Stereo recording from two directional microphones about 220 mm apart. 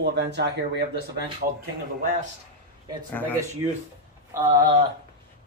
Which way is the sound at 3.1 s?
10° left (ahead or behind).